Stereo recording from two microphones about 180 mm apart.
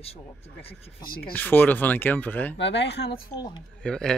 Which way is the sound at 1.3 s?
10° left (ahead or behind).